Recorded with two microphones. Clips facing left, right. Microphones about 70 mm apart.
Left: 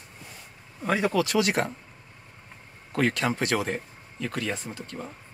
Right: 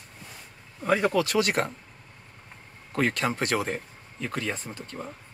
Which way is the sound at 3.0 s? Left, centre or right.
Right.